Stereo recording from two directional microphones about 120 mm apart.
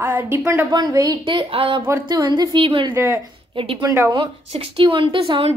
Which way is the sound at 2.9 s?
20° right (ahead or behind).